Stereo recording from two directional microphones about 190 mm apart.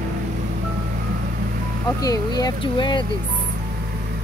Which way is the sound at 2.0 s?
20° left (ahead or behind).